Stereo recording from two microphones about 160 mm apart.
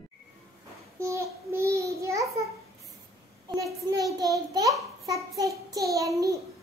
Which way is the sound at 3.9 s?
25° right (ahead or behind).